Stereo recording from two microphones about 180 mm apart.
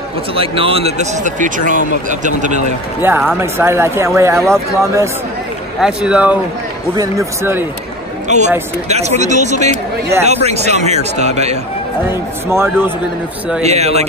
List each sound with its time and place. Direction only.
0.3 s speech: 30° right (ahead or behind)
3.2 s speech: 10° right (ahead or behind)
5.8 s speech: 5° right (ahead or behind)
8.3 s speech: 40° right (ahead or behind)
12.4 s speech: 10° right (ahead or behind)
13.6 s speech: 35° right (ahead or behind)